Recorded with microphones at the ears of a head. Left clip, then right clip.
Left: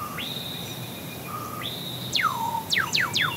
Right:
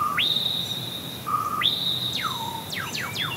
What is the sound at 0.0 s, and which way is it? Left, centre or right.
Whistle, right.